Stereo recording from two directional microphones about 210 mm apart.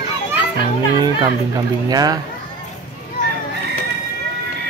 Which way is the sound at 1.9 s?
20° right (ahead or behind).